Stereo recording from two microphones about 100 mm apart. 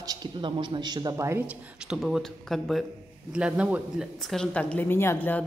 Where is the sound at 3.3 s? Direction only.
10° right (ahead or behind).